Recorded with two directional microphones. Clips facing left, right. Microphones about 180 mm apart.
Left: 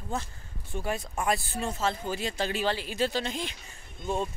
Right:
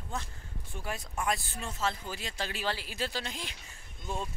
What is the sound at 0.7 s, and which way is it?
Speech, 35° left (ahead or behind).